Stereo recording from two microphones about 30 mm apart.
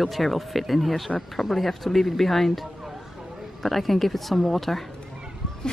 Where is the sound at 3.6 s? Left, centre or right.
Centre.